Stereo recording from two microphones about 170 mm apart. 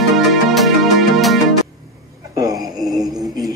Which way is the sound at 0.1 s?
Centre (ahead or behind).